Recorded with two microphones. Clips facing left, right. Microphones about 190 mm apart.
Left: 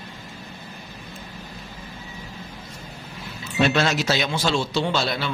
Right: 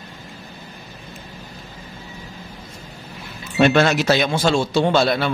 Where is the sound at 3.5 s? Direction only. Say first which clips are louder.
Right 5 dB; 55° right (ahead or behind).